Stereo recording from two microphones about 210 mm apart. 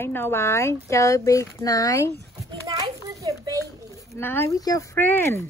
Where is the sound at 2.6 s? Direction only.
15° right (ahead or behind).